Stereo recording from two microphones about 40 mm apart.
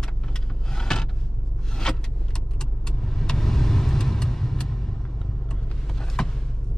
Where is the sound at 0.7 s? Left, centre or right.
Centre.